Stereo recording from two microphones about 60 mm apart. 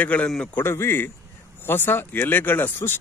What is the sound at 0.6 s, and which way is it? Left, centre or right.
Speech, left.